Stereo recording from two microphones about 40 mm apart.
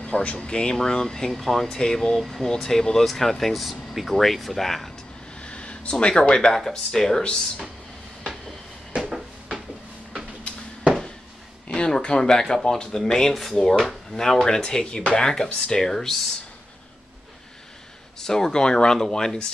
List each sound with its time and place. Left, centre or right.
0.0 s speech: left
0.5 s speech: centre
5.4 s a sound: left
6.7 s speech: centre
11.7 s speech: left
18.2 s speech: centre